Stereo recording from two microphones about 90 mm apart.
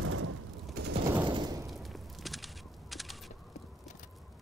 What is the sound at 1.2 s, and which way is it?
Fusillade, 55° right (ahead or behind).